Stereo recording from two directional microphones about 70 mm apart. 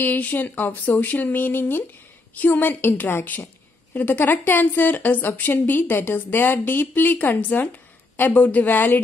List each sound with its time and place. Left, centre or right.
0.0 s a woman's voice: left